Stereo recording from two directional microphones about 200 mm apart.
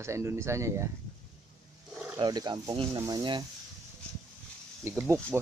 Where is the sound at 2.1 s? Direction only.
20° right (ahead or behind).